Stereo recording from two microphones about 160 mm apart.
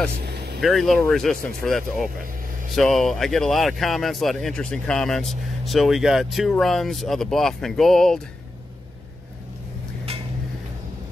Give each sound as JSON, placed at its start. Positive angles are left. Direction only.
{"t": 0.2, "sound": "vehicle", "side_deg": -90}
{"t": 0.6, "sound": "speech", "side_deg": 0}